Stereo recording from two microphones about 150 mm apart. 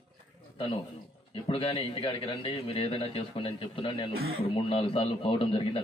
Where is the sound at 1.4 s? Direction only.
40° left (ahead or behind).